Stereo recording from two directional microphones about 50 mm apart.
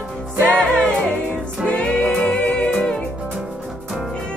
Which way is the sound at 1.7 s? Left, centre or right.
Left.